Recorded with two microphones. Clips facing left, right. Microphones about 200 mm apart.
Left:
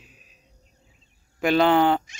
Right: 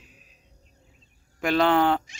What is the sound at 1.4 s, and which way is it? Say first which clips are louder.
Speech: left 2 dB; centre (ahead or behind).